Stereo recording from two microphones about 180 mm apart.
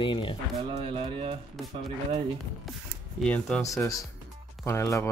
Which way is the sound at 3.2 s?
5° left (ahead or behind).